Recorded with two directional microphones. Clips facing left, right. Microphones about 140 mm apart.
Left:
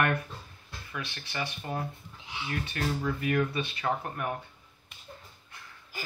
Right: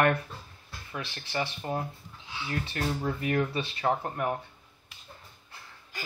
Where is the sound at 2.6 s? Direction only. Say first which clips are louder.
Even; 30° right (ahead or behind).